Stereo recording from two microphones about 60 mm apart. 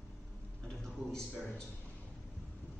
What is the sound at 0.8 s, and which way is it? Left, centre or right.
Speech, centre.